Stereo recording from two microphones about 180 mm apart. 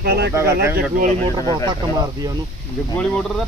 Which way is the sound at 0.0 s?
60° right (ahead or behind).